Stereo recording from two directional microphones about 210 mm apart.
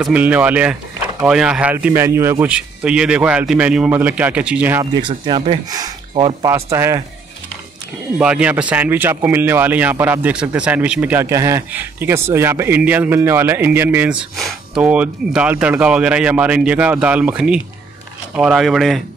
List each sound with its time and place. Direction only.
0.0 s a man's voice: 5° right (ahead or behind)
5.0 s speech: 25° right (ahead or behind)
8.2 s a man's voice: 5° right (ahead or behind)